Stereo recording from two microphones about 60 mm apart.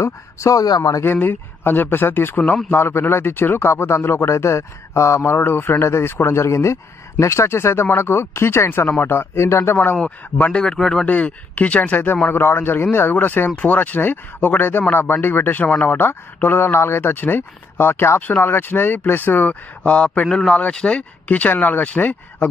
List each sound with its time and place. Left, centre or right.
0.0 s speech: left
1.0 s a man's voice: left
5.4 s a man's voice: left
10.3 s speech: left
10.6 s speech: centre
11.1 s speech: left
12.3 s speech: left
19.8 s speech: centre